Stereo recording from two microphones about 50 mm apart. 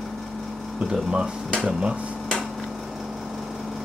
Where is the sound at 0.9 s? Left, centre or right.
Centre.